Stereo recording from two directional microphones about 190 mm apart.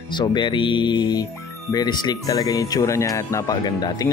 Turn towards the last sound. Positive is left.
turn(degrees=20)  # may be behind; listen again after turning